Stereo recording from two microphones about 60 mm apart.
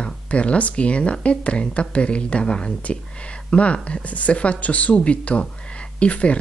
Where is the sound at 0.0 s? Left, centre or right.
Centre.